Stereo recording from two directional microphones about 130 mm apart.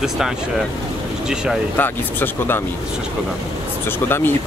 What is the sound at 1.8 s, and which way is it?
Speech, 15° left (ahead or behind).